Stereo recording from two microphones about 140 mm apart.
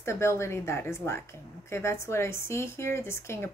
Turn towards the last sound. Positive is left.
turn(degrees=20)  # may be behind; listen again after turning